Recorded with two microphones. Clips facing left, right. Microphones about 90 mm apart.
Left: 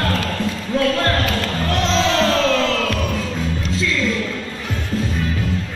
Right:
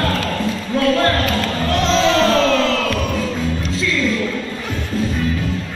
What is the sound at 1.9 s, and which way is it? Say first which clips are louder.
Music: right 3 dB; 5° right (ahead or behind).